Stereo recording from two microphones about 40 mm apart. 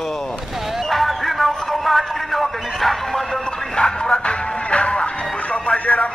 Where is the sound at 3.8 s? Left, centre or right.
Left.